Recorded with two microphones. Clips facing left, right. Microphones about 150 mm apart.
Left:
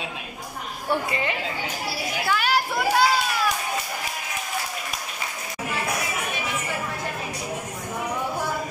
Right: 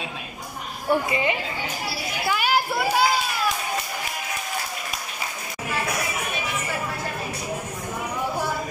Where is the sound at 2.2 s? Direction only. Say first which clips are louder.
Right 1 dB; 10° right (ahead or behind).